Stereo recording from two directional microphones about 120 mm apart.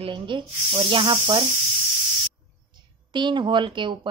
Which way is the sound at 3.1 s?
40° right (ahead or behind).